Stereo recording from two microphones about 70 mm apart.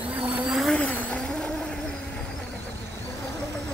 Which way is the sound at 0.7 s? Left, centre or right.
Centre.